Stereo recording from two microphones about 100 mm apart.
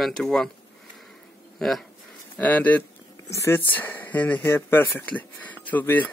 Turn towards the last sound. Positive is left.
turn(degrees=15)  # may be behind; listen again after turning